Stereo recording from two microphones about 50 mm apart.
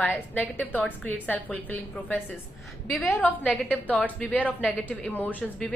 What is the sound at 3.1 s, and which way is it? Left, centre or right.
A woman's voice, left.